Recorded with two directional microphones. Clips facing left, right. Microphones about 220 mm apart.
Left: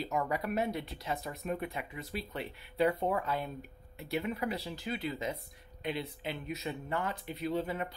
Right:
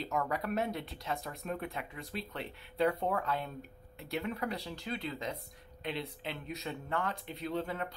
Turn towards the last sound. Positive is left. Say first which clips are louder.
# left 2 dB
turn(degrees=5)  # may be behind; listen again after turning